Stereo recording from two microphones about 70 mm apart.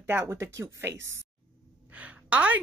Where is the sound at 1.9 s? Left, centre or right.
Centre.